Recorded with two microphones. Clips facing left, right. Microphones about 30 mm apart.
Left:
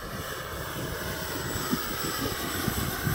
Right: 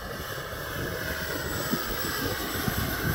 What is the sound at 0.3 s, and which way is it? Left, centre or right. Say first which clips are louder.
Vehicle: right 1 dB; centre.